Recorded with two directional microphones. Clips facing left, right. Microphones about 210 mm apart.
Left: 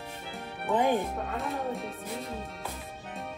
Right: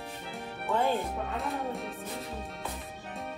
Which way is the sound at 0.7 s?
15° left (ahead or behind).